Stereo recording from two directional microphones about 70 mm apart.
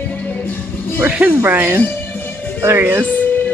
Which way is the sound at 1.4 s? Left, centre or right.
Right.